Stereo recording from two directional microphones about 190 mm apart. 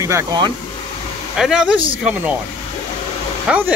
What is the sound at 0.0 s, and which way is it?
Speech, 15° right (ahead or behind).